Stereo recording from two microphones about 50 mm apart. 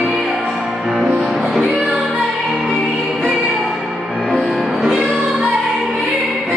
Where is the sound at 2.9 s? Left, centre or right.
Centre.